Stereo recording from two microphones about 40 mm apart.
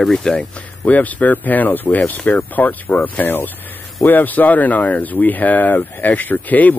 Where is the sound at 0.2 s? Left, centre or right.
Centre.